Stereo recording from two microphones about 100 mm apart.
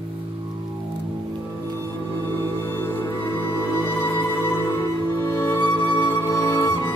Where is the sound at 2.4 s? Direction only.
25° left (ahead or behind).